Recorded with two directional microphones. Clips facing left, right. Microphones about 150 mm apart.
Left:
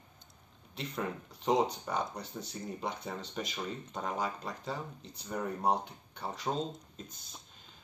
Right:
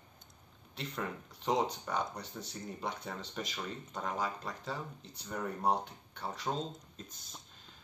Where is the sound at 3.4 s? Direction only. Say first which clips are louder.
Left 2 dB; 20° left (ahead or behind).